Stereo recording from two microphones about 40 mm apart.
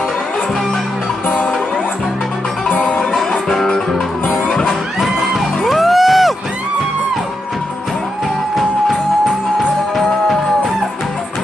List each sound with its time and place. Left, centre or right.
1.2 s music: left
3.4 s music: centre
4.9 s music: centre